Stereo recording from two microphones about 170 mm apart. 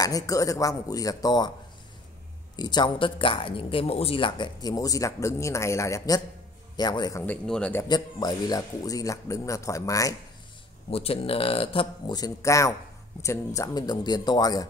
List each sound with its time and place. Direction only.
0.0 s speech: 20° left (ahead or behind)
2.5 s speech: 25° left (ahead or behind)
7.2 s speech: 5° left (ahead or behind)
7.9 s speech: 25° left (ahead or behind)
10.9 s speech: 35° left (ahead or behind)